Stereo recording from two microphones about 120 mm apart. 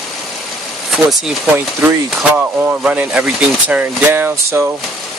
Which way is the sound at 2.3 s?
10° right (ahead or behind).